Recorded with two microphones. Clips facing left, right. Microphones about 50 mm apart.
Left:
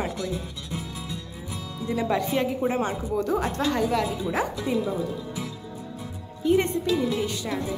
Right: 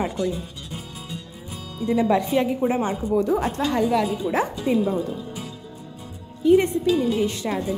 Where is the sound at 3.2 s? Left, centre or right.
Right.